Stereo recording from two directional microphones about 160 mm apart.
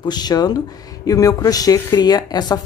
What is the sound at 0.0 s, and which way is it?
Speech, 25° left (ahead or behind).